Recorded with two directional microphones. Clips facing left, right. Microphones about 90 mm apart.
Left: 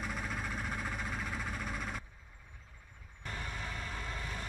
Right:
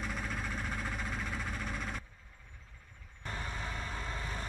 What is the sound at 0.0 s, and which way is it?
Engine, 5° left (ahead or behind).